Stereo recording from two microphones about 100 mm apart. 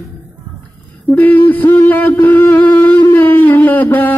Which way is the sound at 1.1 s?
15° left (ahead or behind).